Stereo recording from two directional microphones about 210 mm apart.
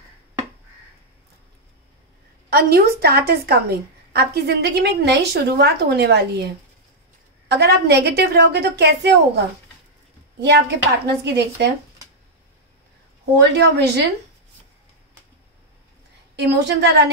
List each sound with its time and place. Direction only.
2.5 s a woman's voice: 50° right (ahead or behind)
13.4 s a woman's voice: 55° right (ahead or behind)
16.3 s a woman's voice: 55° right (ahead or behind)